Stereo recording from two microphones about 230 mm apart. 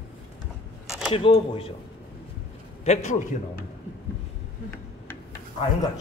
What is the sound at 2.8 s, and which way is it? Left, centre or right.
Speech, left.